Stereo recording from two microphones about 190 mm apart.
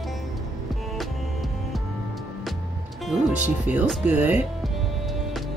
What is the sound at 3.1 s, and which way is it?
Speech, 5° right (ahead or behind).